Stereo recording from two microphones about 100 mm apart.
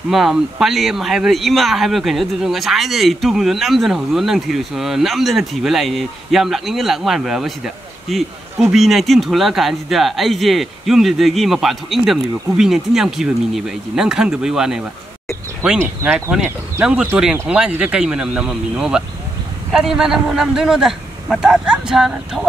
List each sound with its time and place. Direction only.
0.1 s speech: 5° right (ahead or behind)
15.8 s speech: 25° right (ahead or behind)
16.8 s speech: 10° right (ahead or behind)